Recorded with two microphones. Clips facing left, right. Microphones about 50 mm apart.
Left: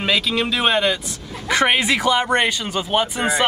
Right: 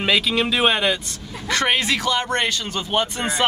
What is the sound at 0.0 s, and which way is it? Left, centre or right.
Speech, centre.